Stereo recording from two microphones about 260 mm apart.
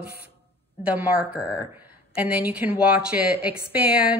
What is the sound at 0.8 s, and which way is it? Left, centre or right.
Speech, centre.